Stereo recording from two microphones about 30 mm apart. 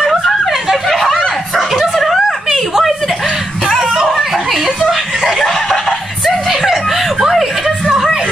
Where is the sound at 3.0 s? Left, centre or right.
Centre.